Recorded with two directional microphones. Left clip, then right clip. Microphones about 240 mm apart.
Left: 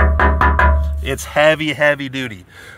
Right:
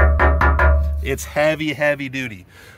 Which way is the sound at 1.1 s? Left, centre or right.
Centre.